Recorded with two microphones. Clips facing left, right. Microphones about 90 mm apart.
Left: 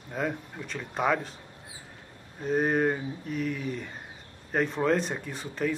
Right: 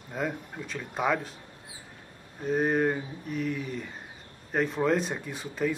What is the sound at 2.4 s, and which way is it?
Speech, centre (ahead or behind).